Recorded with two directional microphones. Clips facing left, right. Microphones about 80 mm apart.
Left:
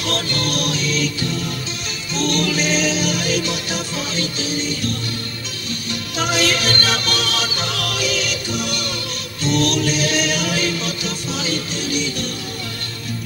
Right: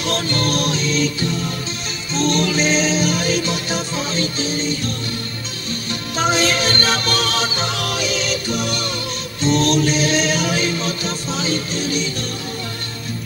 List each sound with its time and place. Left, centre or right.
0.4 s music: right
2.1 s music: right
6.3 s music: right